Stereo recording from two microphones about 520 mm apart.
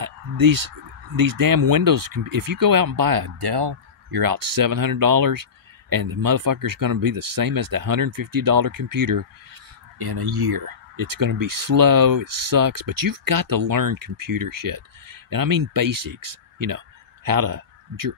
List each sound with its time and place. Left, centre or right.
0.0 s speech: right